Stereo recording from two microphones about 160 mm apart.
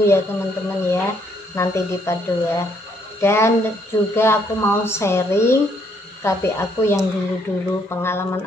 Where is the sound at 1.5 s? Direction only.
15° left (ahead or behind).